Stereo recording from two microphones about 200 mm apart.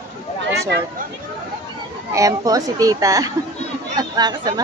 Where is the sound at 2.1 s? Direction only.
15° right (ahead or behind).